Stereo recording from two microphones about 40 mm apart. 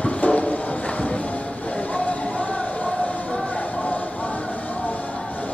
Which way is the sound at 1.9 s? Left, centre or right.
Left.